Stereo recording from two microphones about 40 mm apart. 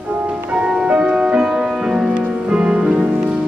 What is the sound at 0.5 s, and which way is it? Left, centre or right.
Music, right.